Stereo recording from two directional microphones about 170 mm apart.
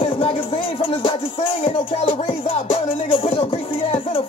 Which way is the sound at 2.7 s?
30° left (ahead or behind).